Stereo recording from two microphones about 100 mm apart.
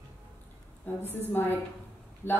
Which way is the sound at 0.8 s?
20° left (ahead or behind).